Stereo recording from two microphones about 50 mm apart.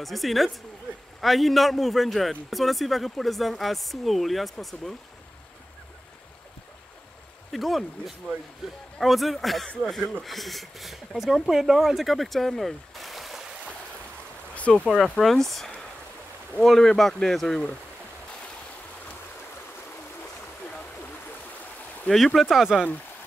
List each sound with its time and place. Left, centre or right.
0.0 s a man's voice: centre
7.5 s a man's voice: centre
14.5 s a sound: left
15.1 s a man's voice: centre
22.1 s a man's voice: centre